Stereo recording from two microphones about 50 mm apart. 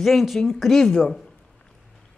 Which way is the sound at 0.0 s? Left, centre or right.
Centre.